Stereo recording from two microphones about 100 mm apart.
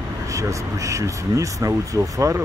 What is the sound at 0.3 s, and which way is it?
Speech, 30° right (ahead or behind).